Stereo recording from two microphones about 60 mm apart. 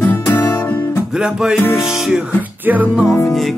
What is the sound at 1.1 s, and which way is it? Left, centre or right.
Music, centre.